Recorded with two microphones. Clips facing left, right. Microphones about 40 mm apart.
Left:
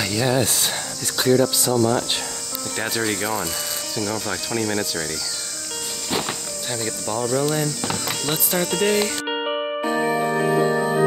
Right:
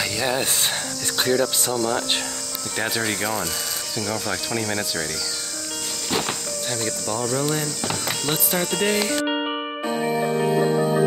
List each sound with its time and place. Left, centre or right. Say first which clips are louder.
0.0 s speech: left 3 dB; centre
1.1 s speech: left 3 dB; right
2.8 s speech: even; centre
6.0 s speech: right 1 dB; centre